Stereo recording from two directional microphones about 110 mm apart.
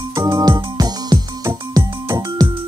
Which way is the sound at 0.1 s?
35° right (ahead or behind).